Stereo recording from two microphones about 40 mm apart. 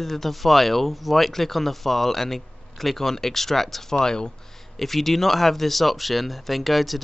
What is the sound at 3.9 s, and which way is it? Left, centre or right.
Speech, centre.